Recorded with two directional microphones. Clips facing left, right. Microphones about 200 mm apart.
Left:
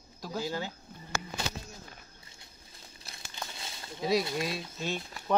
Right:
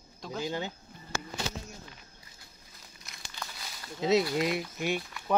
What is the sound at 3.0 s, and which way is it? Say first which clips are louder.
Crumpling: left 1 dB; 25° left (ahead or behind).